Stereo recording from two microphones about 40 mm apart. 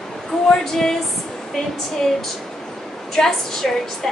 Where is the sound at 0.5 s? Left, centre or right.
Centre.